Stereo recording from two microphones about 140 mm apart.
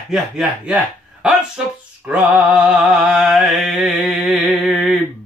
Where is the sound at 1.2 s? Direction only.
5° right (ahead or behind).